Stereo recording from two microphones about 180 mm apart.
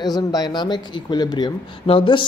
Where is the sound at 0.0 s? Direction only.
20° left (ahead or behind).